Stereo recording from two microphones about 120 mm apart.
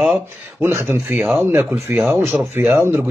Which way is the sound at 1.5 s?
20° right (ahead or behind).